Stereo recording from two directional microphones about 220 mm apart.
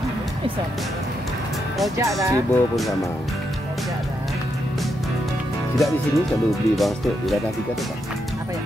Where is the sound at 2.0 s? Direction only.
15° right (ahead or behind).